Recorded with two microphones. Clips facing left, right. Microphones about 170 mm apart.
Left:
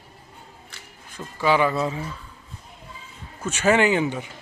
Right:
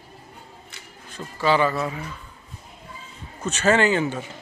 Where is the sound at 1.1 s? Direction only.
10° left (ahead or behind).